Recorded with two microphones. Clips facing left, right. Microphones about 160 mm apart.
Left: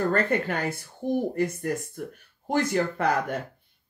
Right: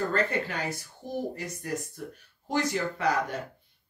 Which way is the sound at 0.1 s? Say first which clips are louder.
Left 4 dB; 55° left (ahead or behind).